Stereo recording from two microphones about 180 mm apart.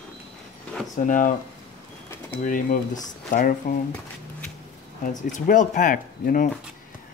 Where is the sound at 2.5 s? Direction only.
45° left (ahead or behind).